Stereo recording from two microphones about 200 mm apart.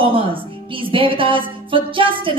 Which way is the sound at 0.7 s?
25° right (ahead or behind).